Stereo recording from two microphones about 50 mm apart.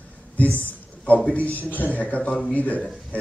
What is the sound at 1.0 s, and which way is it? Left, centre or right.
A man's voice, left.